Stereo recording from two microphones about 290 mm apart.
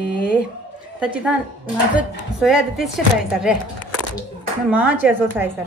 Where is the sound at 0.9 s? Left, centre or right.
Centre.